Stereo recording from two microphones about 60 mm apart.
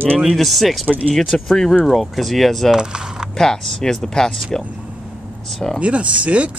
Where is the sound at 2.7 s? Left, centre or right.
Centre.